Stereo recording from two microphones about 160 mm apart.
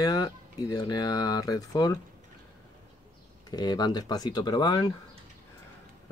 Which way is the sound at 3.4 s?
25° left (ahead or behind).